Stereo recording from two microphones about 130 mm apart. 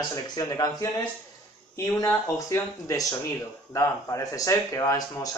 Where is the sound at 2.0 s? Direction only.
25° left (ahead or behind).